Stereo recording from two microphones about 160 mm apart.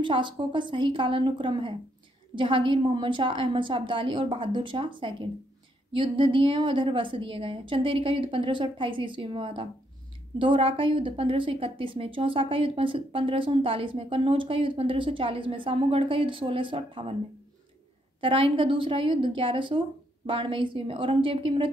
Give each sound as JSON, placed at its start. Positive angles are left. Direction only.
{"t": 0.0, "sound": "speech", "side_deg": -30}
{"t": 18.2, "sound": "speech", "side_deg": -35}